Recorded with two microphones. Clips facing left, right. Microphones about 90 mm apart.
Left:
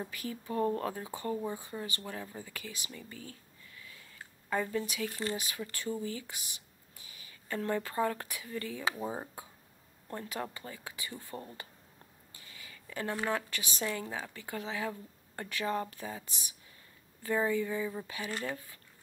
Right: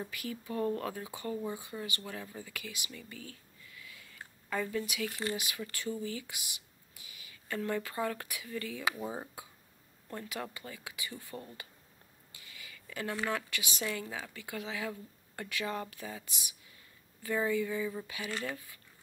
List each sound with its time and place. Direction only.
0.1 s speech: 35° left (ahead or behind)
4.5 s speech: 25° left (ahead or behind)
5.7 s a sound: 35° left (ahead or behind)
7.5 s speech: 20° left (ahead or behind)
10.0 s speech: 35° left (ahead or behind)
12.4 s a sound: 35° left (ahead or behind)
12.9 s speech: 30° left (ahead or behind)
17.3 s speech: 20° left (ahead or behind)
18.0 s speech: 35° left (ahead or behind)